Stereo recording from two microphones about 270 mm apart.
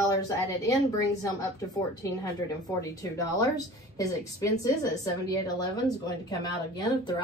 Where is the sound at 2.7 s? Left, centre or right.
Centre.